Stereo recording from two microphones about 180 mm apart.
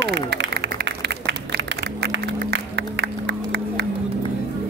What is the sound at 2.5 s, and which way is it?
Music, 75° right (ahead or behind).